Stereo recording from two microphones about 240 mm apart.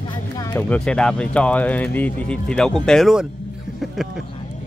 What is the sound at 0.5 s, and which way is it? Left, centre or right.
Speech, centre.